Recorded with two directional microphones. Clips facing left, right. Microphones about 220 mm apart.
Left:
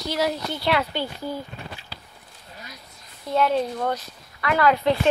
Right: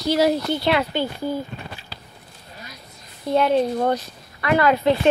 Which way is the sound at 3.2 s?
25° right (ahead or behind).